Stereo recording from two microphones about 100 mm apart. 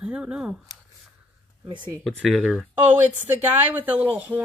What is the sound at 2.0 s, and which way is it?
Speech, 5° left (ahead or behind).